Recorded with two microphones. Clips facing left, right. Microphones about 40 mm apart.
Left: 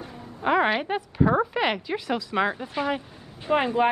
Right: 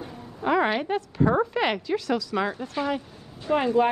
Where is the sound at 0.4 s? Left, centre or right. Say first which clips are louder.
Left 1 dB; left.